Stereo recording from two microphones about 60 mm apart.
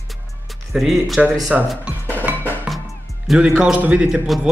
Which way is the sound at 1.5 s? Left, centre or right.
Right.